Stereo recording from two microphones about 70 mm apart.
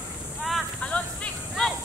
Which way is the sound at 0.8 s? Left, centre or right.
Centre.